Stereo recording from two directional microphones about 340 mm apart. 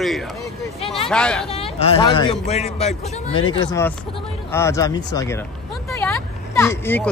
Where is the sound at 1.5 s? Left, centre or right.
Centre.